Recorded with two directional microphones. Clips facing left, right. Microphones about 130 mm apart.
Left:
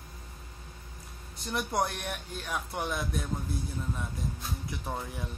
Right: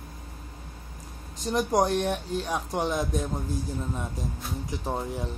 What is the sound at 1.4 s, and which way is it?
Speech, 40° right (ahead or behind).